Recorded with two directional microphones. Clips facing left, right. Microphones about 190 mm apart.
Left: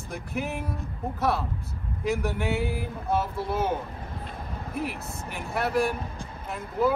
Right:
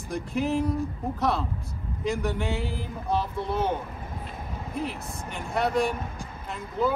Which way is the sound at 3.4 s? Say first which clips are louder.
Even; 5° left (ahead or behind).